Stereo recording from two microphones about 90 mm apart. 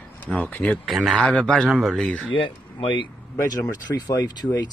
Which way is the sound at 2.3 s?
75° left (ahead or behind).